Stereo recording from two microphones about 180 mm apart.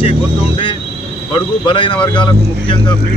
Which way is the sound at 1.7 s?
30° left (ahead or behind).